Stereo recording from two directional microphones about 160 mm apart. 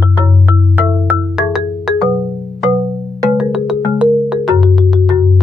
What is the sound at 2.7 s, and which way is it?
Music, 20° right (ahead or behind).